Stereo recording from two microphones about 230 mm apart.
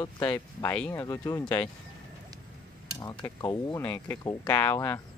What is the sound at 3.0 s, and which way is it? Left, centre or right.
Speech, centre.